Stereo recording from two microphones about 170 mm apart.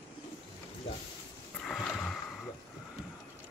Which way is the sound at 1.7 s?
5° left (ahead or behind).